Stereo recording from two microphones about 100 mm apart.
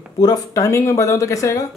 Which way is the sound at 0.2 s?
35° left (ahead or behind).